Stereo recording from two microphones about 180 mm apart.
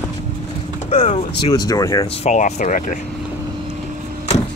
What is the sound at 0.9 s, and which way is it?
Speech, 40° left (ahead or behind).